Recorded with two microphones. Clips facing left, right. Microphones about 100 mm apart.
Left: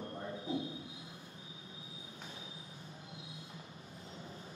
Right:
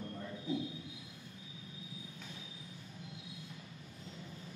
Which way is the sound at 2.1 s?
30° left (ahead or behind).